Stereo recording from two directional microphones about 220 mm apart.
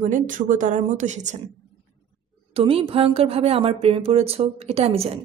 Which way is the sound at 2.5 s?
25° right (ahead or behind).